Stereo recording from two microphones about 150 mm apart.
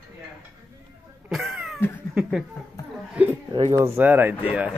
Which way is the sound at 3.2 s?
10° right (ahead or behind).